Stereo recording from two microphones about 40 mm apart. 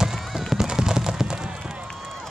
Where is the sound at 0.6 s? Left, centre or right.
Centre.